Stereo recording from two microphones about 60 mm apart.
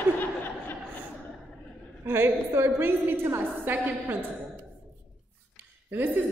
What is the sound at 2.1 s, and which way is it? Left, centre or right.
A woman's voice, right.